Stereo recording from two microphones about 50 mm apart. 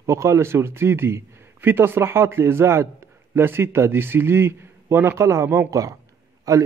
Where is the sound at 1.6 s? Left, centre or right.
Right.